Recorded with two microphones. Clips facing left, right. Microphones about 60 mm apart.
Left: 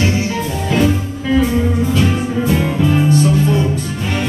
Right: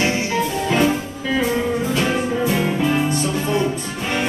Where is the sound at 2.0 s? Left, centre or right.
Centre.